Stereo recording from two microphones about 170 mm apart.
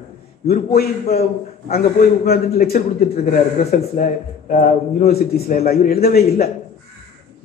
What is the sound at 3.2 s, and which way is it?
Speech, 40° left (ahead or behind).